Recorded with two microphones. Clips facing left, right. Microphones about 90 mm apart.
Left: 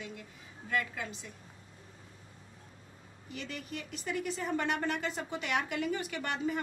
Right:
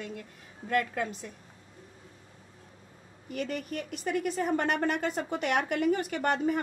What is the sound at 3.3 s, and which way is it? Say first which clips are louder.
A woman's voice: right 8 dB; 50° right (ahead or behind).